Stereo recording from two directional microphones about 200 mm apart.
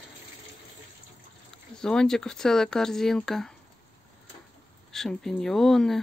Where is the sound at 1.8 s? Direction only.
5° left (ahead or behind).